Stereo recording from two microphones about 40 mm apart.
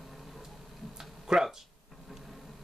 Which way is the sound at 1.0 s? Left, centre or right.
Centre.